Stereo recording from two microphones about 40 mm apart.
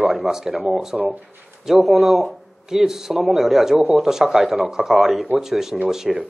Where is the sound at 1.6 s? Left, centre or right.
Centre.